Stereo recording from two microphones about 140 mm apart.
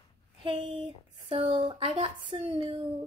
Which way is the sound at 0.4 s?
35° right (ahead or behind).